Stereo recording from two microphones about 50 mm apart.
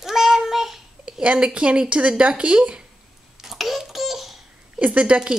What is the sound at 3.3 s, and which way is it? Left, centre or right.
Babbling, centre.